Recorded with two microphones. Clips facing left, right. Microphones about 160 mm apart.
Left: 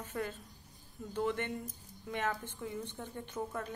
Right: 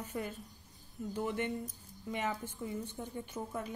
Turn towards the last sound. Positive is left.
turn(degrees=-10)  # may be behind; listen again after turning